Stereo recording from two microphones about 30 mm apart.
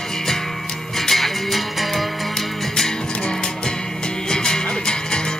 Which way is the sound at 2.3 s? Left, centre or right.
Centre.